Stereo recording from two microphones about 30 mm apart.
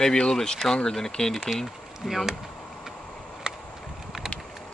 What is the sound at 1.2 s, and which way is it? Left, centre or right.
Speech, left.